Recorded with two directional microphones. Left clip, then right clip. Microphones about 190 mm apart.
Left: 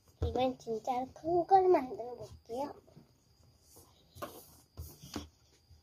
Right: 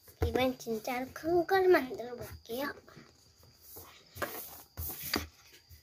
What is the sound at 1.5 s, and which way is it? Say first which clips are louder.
Speech: left 1 dB; 15° right (ahead or behind).